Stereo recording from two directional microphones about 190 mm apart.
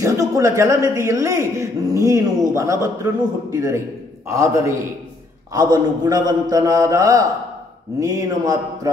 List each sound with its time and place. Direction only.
0.0 s a man's voice: 15° right (ahead or behind)